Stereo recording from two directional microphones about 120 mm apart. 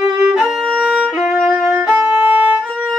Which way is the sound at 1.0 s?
15° right (ahead or behind).